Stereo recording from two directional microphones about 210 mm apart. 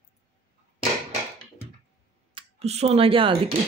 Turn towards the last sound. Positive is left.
turn(degrees=-25)  # may be behind; listen again after turning